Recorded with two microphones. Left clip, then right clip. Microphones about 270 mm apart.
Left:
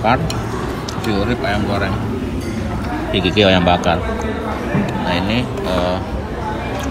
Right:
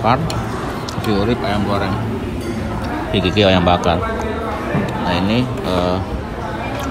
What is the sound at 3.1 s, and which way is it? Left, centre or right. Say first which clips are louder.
Speech: left 1 dB; right.